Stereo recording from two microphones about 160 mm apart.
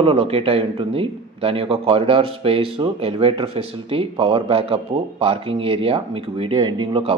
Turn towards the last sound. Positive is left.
turn(degrees=-35)  # may be behind; listen again after turning